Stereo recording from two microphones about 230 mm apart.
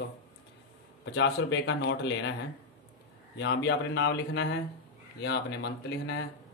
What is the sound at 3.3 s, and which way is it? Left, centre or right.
Speech, left.